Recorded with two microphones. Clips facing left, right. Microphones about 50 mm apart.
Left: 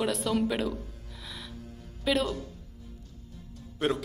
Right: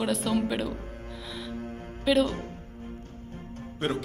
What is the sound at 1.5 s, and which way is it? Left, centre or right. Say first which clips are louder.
Music: right 9 dB; right.